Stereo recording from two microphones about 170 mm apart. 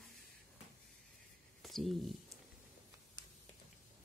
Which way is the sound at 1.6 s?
Centre (ahead or behind).